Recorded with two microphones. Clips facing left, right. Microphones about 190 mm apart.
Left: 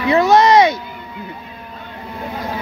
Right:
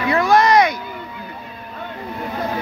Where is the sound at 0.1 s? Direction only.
20° left (ahead or behind).